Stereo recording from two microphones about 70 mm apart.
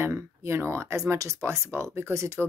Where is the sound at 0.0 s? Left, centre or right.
Right.